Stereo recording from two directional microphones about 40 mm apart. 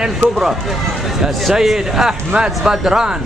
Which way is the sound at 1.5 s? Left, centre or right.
Centre.